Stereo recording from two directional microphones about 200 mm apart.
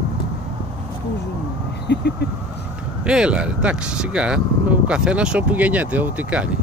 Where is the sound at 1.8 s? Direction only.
55° left (ahead or behind).